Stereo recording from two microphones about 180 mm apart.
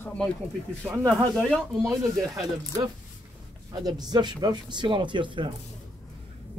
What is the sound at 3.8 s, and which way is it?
Speech, 20° right (ahead or behind).